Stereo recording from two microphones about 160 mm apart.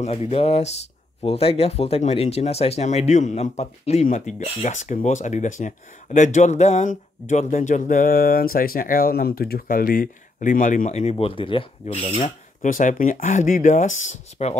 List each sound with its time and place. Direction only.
0.0 s speech: 40° left (ahead or behind)
12.1 s speech: 50° left (ahead or behind)